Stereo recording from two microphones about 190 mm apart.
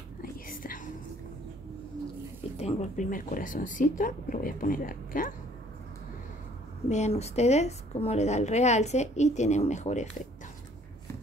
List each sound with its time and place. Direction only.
0.2 s whispering: 45° left (ahead or behind)
2.5 s speech: 35° left (ahead or behind)
6.9 s a woman's voice: 35° left (ahead or behind)